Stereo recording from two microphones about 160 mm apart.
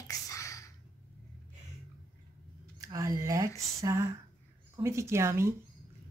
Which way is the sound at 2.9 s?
20° right (ahead or behind).